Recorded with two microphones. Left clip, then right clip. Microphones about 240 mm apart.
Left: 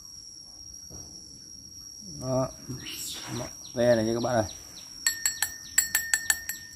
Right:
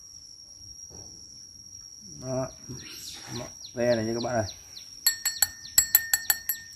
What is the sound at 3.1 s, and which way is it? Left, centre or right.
Bird, centre.